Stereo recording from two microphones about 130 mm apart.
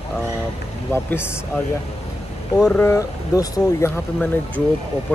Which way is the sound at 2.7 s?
20° left (ahead or behind).